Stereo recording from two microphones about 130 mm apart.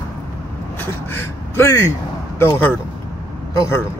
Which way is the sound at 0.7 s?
20° left (ahead or behind).